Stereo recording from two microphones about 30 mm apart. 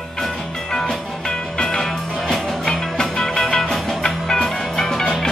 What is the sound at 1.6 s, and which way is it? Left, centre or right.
Music, left.